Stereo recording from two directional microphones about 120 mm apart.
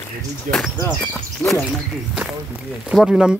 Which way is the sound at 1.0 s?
10° left (ahead or behind).